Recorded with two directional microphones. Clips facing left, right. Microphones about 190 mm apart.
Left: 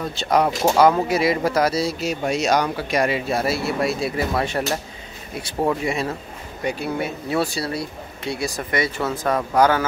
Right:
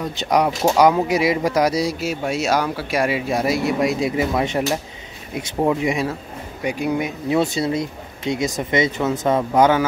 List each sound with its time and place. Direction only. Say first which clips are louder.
0.0 s speech: right 1 dB; 15° right (ahead or behind)